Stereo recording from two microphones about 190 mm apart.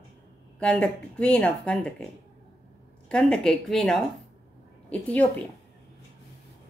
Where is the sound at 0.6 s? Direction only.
5° left (ahead or behind).